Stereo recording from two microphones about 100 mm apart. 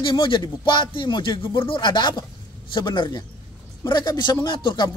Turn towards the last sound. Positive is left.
turn(degrees=50)  # may be behind; listen again after turning